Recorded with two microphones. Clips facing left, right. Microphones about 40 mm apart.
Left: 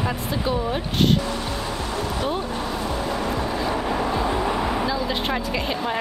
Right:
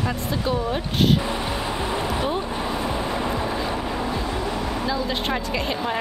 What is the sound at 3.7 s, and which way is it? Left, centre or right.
Vehicle, centre.